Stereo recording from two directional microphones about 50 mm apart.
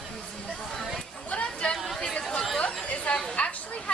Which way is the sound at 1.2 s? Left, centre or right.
Left.